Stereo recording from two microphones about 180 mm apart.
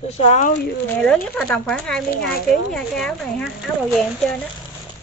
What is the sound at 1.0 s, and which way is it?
Speech, 5° left (ahead or behind).